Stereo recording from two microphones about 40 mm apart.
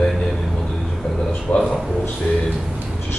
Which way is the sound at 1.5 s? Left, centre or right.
Left.